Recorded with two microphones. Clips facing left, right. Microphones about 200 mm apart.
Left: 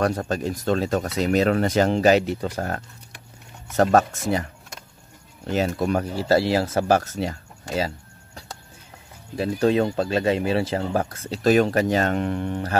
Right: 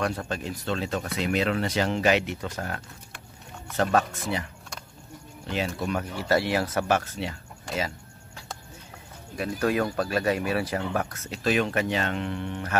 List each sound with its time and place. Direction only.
0.0 s speech: 40° left (ahead or behind)
5.5 s speech: 45° left (ahead or behind)
9.4 s speech: 25° left (ahead or behind)